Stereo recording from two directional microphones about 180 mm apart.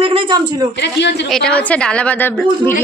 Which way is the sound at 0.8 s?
75° left (ahead or behind).